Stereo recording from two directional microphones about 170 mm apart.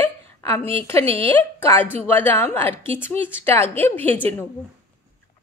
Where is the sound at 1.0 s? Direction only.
35° right (ahead or behind).